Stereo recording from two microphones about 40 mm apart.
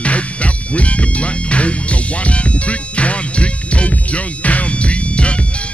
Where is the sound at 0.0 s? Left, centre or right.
Left.